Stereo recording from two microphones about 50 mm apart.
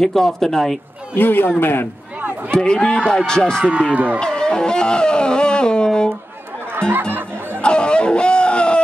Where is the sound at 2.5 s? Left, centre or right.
Centre.